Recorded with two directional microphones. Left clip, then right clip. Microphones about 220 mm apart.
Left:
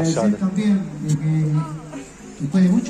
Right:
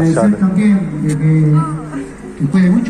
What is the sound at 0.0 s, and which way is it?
Speech, 15° left (ahead or behind).